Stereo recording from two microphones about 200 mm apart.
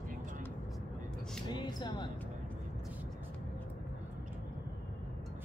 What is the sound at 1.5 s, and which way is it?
Speech, 20° left (ahead or behind).